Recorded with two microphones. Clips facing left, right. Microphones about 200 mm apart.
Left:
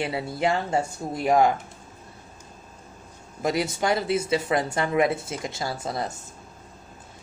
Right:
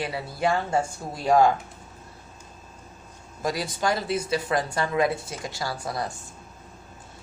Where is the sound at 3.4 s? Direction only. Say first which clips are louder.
Left 3 dB; 25° left (ahead or behind).